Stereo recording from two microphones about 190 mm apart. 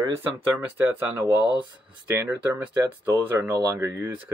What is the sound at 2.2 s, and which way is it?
Speech, 10° right (ahead or behind).